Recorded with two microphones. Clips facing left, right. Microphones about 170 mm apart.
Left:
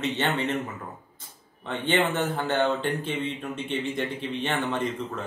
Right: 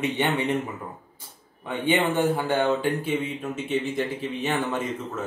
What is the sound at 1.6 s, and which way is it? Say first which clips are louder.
Speech: right 2 dB; 10° right (ahead or behind).